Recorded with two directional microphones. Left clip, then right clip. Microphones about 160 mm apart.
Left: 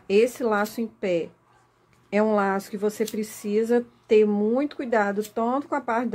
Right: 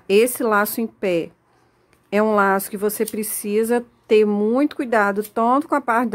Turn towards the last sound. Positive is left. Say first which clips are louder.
# right 7 dB
turn(degrees=-50)  # may be behind; listen again after turning